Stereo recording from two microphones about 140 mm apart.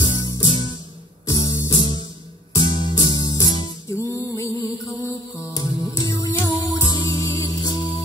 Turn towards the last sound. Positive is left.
turn(degrees=25)  # may be behind; listen again after turning